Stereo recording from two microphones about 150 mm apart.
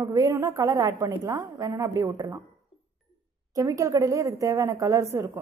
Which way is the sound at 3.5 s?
20° right (ahead or behind).